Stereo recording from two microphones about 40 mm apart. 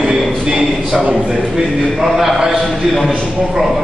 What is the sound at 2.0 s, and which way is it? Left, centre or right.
Speech, centre.